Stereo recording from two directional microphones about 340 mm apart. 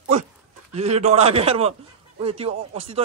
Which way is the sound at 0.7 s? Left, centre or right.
Centre.